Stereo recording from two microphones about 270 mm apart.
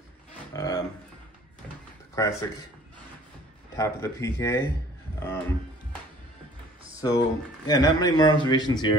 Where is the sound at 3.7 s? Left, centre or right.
Centre.